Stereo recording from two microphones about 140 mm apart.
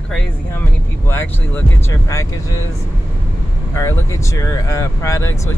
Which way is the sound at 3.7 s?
20° left (ahead or behind).